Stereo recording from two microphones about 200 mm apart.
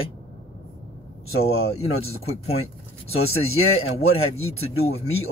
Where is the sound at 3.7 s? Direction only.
30° left (ahead or behind).